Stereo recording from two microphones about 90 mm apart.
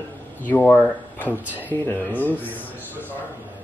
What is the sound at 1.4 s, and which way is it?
Speech, 20° right (ahead or behind).